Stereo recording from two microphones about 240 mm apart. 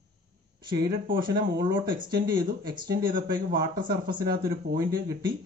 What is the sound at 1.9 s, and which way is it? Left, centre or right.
Speech, centre.